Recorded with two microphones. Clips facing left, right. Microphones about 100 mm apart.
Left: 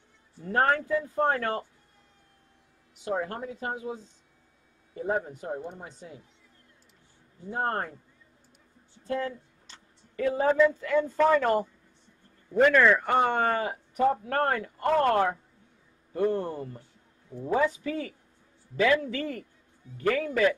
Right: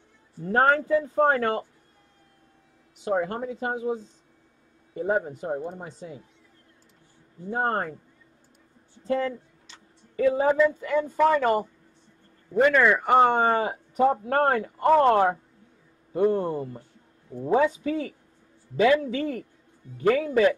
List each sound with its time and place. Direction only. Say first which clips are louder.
0.5 s a man's voice: right 4 dB; 35° right (ahead or behind)
3.0 s speech: right 5 dB; 25° right (ahead or behind)
7.4 s speech: right 4 dB; 30° right (ahead or behind)
9.0 s speech: right 5 dB; 35° right (ahead or behind)
10.1 s speech: right 3 dB; 15° right (ahead or behind)